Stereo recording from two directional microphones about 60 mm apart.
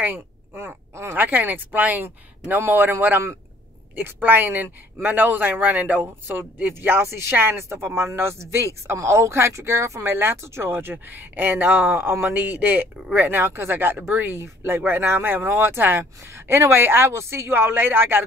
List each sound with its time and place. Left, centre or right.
0.0 s a sound: right
0.9 s a man's voice: right
6.2 s speech: right
10.1 s speech: right